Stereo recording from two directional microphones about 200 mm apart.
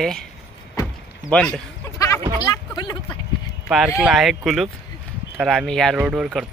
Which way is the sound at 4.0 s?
Centre (ahead or behind).